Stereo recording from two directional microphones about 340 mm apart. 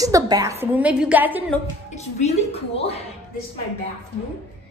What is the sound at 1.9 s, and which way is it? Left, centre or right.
A woman's voice, centre.